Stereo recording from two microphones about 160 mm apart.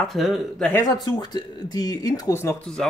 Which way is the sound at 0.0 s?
Centre (ahead or behind).